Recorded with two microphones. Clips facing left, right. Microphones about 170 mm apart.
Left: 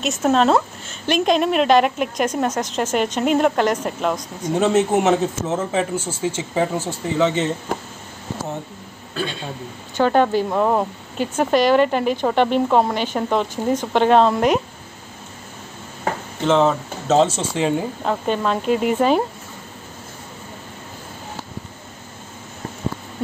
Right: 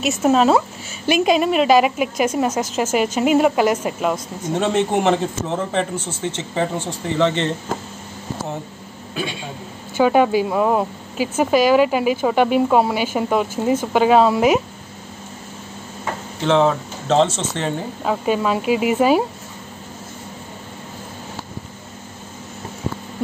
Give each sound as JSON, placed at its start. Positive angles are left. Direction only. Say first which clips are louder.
{"t": 0.0, "sound": "a woman's voice", "louder": "right 2 dB", "side_deg": -5}
{"t": 9.1, "sound": "a man's voice", "louder": "left 1 dB", "side_deg": -10}
{"t": 16.4, "sound": "speech", "louder": "even", "side_deg": 0}
{"t": 18.0, "sound": "speech", "louder": "right 4 dB", "side_deg": -5}